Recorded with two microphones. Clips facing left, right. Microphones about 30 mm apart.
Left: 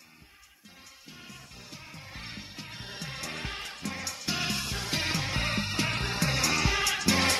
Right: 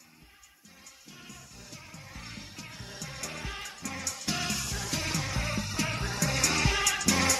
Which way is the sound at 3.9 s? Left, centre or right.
Left.